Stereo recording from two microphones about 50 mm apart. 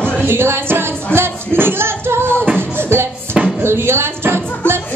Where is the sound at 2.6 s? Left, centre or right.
Right.